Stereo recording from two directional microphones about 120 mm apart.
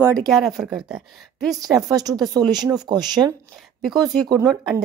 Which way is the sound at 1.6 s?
30° right (ahead or behind).